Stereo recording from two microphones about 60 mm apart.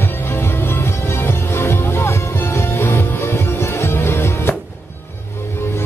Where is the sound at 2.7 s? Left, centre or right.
Left.